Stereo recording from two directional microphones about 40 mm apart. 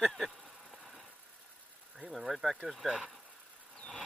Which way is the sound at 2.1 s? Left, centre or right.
Centre.